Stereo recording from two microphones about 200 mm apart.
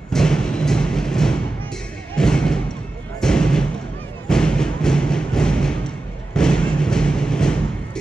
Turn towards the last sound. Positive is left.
turn(degrees=5)  # may be behind; listen again after turning